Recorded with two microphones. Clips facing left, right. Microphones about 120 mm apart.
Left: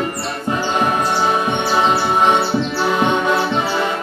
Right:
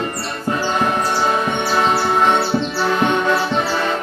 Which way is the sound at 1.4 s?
15° left (ahead or behind).